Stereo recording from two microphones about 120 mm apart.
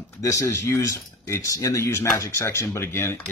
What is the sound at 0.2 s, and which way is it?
Speech, 25° left (ahead or behind).